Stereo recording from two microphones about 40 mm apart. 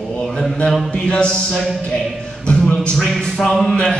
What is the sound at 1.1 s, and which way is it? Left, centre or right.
Music, left.